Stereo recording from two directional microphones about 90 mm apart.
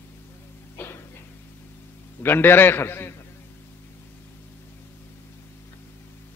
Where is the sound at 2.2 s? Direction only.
25° left (ahead or behind).